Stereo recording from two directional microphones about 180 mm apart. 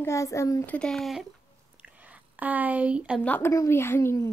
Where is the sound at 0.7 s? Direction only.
5° left (ahead or behind).